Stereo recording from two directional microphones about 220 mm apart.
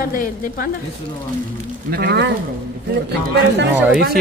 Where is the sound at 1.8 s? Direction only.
45° right (ahead or behind).